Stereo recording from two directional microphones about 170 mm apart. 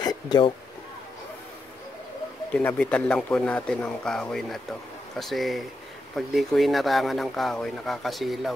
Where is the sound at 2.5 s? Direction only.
5° left (ahead or behind).